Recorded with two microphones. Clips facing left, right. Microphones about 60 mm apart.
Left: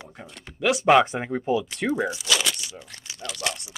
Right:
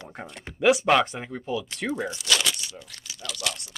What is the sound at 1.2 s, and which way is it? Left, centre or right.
Speech, left.